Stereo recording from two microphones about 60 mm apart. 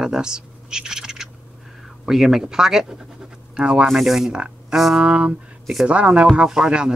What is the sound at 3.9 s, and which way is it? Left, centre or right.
Insect, centre.